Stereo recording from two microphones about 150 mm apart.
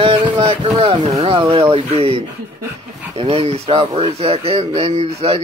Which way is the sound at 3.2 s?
40° right (ahead or behind).